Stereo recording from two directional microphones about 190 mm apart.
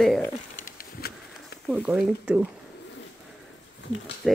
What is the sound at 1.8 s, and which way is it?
Speech, 5° right (ahead or behind).